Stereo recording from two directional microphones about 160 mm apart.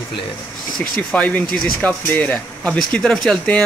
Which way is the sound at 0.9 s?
10° left (ahead or behind).